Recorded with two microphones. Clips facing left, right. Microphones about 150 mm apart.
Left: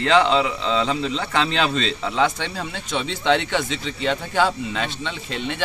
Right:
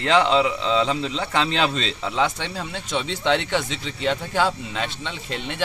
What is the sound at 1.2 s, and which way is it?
Speech, 20° right (ahead or behind).